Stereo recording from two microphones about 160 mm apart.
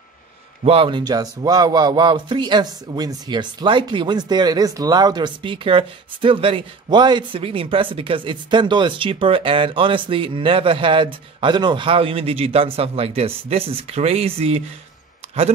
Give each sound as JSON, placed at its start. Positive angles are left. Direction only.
{"t": 0.7, "sound": "speech", "side_deg": -35}